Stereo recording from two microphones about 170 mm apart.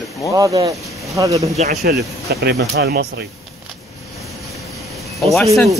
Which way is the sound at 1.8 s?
75° right (ahead or behind).